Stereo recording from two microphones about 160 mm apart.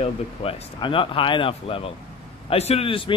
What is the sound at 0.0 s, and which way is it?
Speech, 35° left (ahead or behind).